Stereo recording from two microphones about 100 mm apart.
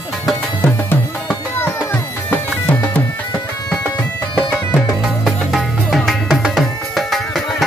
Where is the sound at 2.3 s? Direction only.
20° left (ahead or behind).